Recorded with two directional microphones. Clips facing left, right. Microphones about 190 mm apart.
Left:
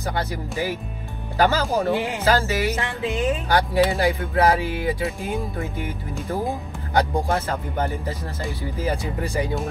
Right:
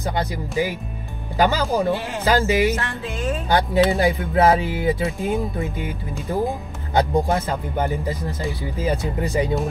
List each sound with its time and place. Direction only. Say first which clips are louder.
0.0 s speech: right 2 dB; 15° right (ahead or behind)
2.7 s music: left 1 dB; 15° left (ahead or behind)
3.4 s speech: right 4 dB; 20° right (ahead or behind)